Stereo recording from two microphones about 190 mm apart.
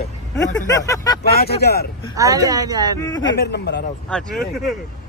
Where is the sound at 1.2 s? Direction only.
55° left (ahead or behind).